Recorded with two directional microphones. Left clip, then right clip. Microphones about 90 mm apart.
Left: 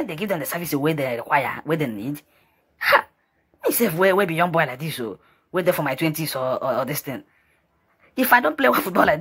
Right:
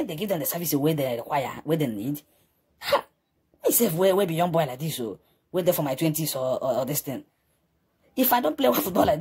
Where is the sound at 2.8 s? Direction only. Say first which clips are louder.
Left 7 dB; 20° right (ahead or behind).